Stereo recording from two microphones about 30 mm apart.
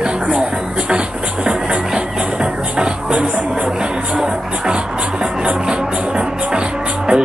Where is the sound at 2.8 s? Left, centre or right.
Right.